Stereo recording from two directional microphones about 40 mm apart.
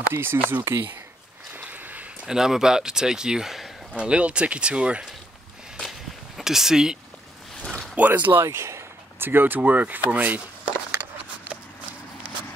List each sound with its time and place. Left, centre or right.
0.1 s speech: right
1.8 s a sound: right
2.2 s speech: centre
3.9 s speech: right
5.8 s walk: centre
7.6 s a sound: centre
8.0 s speech: right
9.2 s speech: right
9.6 s speech: right
11.5 s a sound: right